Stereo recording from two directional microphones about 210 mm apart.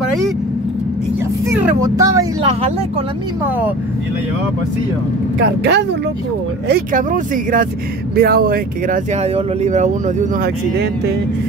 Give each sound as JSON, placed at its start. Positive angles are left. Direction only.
{"t": 1.5, "sound": "speech", "side_deg": -15}
{"t": 5.4, "sound": "speech", "side_deg": -55}
{"t": 6.7, "sound": "speech", "side_deg": -40}